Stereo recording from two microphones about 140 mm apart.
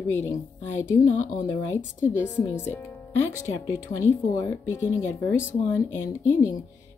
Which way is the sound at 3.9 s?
25° left (ahead or behind).